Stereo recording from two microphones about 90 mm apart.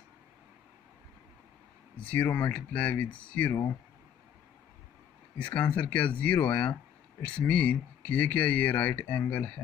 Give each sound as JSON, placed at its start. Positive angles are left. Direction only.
{"t": 2.0, "sound": "speech", "side_deg": 15}
{"t": 5.4, "sound": "speech", "side_deg": 15}